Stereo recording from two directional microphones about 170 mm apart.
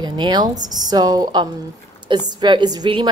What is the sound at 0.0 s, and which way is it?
A woman's voice, 25° right (ahead or behind).